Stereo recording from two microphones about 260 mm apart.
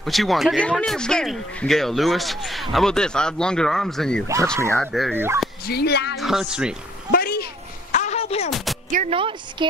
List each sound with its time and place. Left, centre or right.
0.0 s speech: centre
5.7 s speech: left
6.1 s speech: centre
7.1 s a sound: left
8.5 s a sound: centre
8.9 s speech: right